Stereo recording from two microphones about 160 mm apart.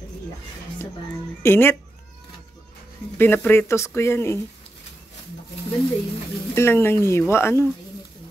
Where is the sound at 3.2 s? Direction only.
10° left (ahead or behind).